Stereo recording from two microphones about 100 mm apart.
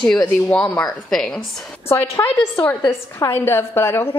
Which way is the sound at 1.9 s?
25° left (ahead or behind).